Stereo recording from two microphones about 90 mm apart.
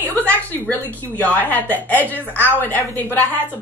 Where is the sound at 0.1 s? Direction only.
20° left (ahead or behind).